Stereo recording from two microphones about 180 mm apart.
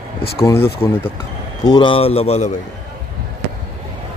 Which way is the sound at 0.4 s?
15° left (ahead or behind).